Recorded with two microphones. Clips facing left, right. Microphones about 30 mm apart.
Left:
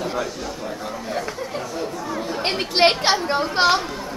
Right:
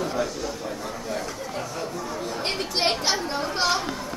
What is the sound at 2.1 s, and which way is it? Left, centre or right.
Chatter, left.